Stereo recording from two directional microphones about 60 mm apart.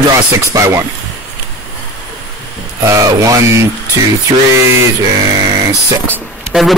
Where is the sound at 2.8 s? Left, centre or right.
Right.